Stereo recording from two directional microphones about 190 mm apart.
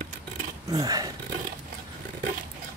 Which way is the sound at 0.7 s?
20° right (ahead or behind).